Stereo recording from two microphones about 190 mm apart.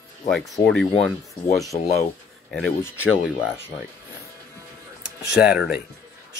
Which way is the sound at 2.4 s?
5° left (ahead or behind).